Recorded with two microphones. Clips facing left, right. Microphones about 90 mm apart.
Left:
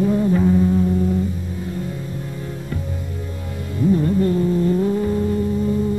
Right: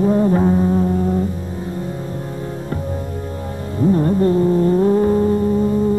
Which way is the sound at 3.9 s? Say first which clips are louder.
Right 3 dB; 35° right (ahead or behind).